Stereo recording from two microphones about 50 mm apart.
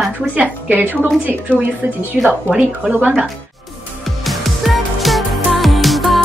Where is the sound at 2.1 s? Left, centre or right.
Centre.